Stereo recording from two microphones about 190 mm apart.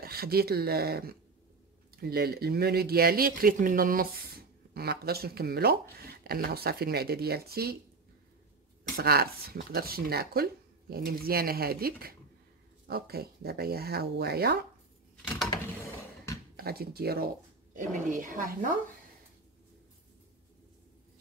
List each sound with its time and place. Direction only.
0.0 s speech: 55° right (ahead or behind)
8.9 s speech: 55° right (ahead or behind)
16.5 s speech: 55° right (ahead or behind)
17.7 s speech: 40° right (ahead or behind)